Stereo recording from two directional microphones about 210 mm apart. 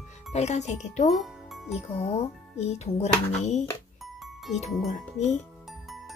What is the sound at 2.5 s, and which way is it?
Speech, 30° left (ahead or behind).